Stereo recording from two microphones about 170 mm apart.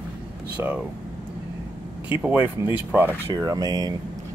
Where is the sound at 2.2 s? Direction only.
10° right (ahead or behind).